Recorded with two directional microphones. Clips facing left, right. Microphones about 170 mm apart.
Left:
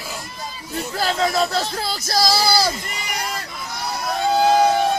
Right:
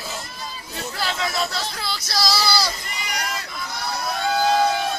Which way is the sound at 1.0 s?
40° left (ahead or behind).